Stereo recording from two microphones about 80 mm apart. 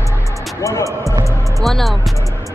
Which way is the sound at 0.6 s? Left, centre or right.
Left.